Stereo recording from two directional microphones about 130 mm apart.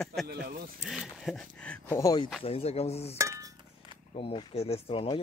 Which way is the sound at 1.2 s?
5° left (ahead or behind).